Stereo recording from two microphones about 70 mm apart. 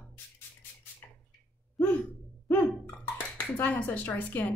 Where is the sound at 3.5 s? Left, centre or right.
Left.